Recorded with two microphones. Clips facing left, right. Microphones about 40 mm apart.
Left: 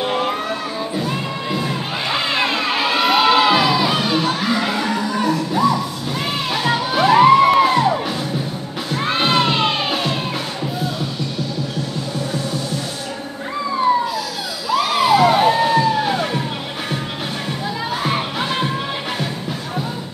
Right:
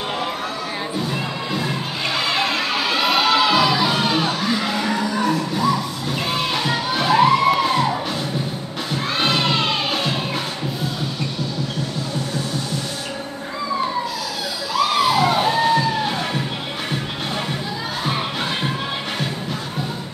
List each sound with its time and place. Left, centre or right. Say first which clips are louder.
2.0 s children shouting: left 1 dB; left
3.6 s crowd: left 1 dB; centre
4.6 s music: left 1 dB; centre
9.2 s children shouting: left 3 dB; left
15.0 s music: left 4 dB; centre